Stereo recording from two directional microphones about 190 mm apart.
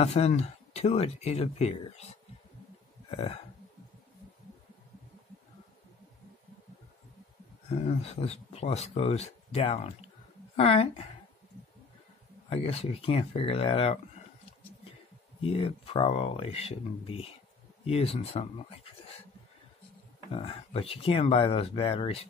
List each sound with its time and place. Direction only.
0.0 s speech: 35° left (ahead or behind)
3.1 s speech: 30° left (ahead or behind)
7.7 s speech: 35° left (ahead or behind)
12.4 s speech: 30° left (ahead or behind)
15.4 s speech: 30° left (ahead or behind)
20.3 s speech: 30° left (ahead or behind)